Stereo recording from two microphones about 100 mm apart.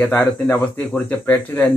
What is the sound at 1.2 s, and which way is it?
Speech, 20° left (ahead or behind).